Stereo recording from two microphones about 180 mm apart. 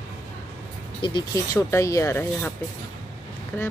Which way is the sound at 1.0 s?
20° left (ahead or behind).